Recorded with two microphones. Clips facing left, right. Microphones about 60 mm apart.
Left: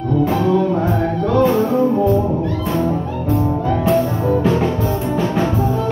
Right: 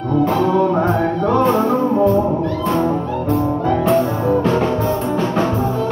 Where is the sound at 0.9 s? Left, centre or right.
Right.